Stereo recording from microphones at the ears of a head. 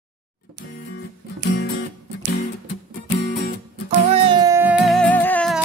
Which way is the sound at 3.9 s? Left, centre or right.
Right.